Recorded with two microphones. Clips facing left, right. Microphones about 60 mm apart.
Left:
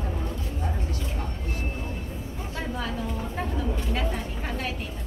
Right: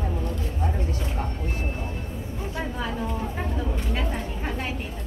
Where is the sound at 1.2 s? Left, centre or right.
Right.